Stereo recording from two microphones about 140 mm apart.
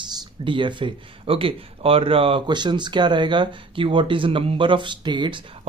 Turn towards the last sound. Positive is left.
turn(degrees=-35)  # may be behind; listen again after turning